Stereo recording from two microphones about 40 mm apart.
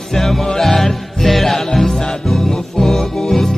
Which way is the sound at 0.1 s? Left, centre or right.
Centre.